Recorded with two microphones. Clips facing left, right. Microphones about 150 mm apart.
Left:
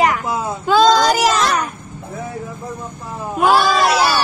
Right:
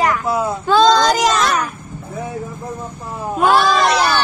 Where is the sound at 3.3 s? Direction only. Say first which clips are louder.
Even; 5° left (ahead or behind).